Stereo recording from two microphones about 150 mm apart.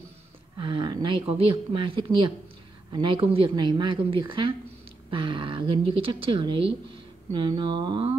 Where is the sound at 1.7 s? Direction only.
35° right (ahead or behind).